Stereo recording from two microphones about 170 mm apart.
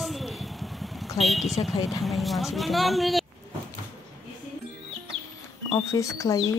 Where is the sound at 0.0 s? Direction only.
Centre (ahead or behind).